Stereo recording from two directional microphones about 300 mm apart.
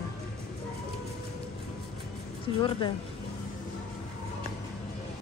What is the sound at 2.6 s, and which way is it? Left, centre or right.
Speech, centre.